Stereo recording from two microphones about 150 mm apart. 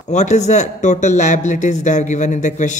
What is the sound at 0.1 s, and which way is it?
Speech, 50° left (ahead or behind).